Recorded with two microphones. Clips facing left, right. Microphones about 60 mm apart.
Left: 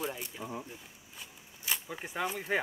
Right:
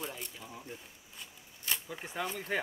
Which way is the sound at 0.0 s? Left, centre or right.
Centre.